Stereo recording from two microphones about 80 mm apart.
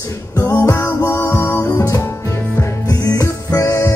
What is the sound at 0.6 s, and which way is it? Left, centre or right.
Music, left.